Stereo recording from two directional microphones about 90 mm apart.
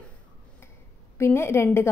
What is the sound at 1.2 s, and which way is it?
Speech, 30° left (ahead or behind).